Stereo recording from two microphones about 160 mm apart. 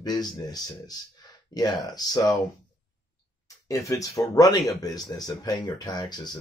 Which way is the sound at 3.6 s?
20° left (ahead or behind).